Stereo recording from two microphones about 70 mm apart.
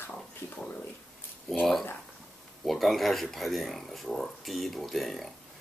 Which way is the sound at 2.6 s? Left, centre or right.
Centre.